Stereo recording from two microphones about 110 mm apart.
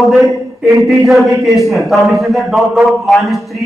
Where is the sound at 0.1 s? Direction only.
Centre (ahead or behind).